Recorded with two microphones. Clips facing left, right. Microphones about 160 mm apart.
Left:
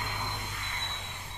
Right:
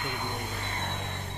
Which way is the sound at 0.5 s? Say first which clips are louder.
Right 6 dB; 40° right (ahead or behind).